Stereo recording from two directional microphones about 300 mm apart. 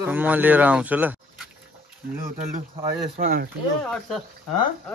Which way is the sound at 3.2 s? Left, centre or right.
Right.